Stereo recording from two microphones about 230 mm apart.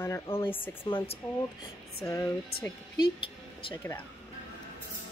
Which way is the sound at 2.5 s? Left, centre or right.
Left.